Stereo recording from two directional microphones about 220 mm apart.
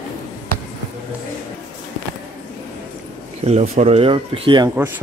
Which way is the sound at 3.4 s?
30° right (ahead or behind).